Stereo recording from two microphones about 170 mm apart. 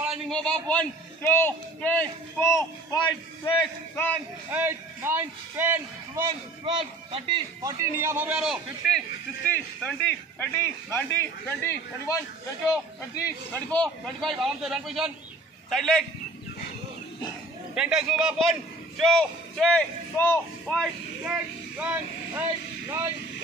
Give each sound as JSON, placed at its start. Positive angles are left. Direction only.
{"t": 0.1, "sound": "a man's voice", "side_deg": 5}
{"t": 3.9, "sound": "speech", "side_deg": 10}
{"t": 4.5, "sound": "a man's voice", "side_deg": -10}
{"t": 6.2, "sound": "a man's voice", "side_deg": -25}
{"t": 7.6, "sound": "a man's voice", "side_deg": -15}
{"t": 13.1, "sound": "speech", "side_deg": 20}
{"t": 13.7, "sound": "a man's voice", "side_deg": 5}
{"t": 17.7, "sound": "a man's voice", "side_deg": -5}
{"t": 21.2, "sound": "speech", "side_deg": -10}